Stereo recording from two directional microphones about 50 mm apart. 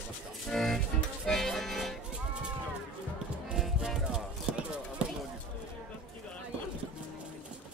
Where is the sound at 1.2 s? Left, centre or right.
Centre.